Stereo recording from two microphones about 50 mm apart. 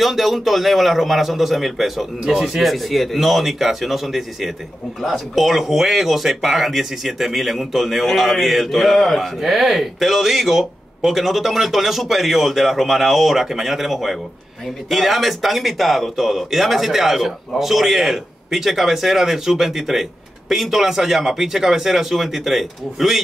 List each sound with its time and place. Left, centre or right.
0.0 s speech: centre